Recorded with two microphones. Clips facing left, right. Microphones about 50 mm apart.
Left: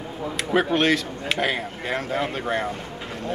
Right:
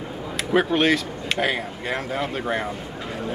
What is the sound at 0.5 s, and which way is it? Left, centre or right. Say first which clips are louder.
Speech: right 1 dB; centre.